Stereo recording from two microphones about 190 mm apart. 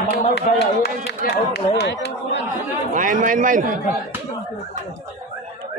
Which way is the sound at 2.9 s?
45° right (ahead or behind).